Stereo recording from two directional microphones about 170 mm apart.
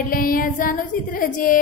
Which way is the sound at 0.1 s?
55° left (ahead or behind).